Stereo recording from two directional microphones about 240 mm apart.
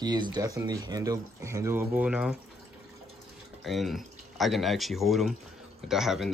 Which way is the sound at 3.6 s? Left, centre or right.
Centre.